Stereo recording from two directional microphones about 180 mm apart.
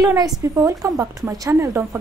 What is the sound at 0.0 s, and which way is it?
A woman's voice, 20° right (ahead or behind).